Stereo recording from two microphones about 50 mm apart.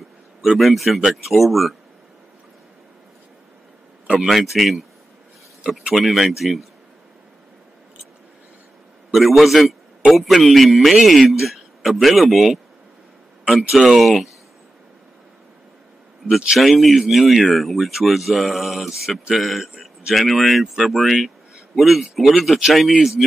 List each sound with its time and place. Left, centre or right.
0.4 s a man's voice: centre
4.3 s a man's voice: centre
5.6 s speech: centre
5.9 s a man's voice: centre
9.1 s a man's voice: centre
16.3 s a man's voice: centre